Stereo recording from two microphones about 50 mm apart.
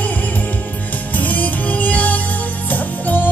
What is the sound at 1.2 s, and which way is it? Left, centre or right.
Music, left.